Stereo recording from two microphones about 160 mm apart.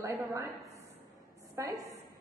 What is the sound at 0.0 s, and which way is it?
Speech, 15° right (ahead or behind).